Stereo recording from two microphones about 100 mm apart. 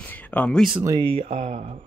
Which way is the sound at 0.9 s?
65° right (ahead or behind).